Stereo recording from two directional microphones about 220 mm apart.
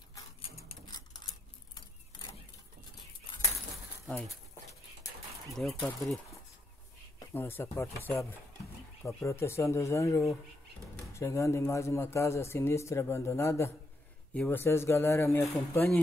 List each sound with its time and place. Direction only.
0.7 s a sound: 20° left (ahead or behind)
5.6 s speech: centre (ahead or behind)
7.3 s a man's voice: 10° left (ahead or behind)